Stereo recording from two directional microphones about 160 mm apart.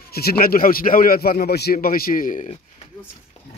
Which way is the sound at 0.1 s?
75° left (ahead or behind).